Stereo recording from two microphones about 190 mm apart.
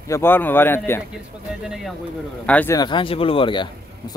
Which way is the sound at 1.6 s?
Centre (ahead or behind).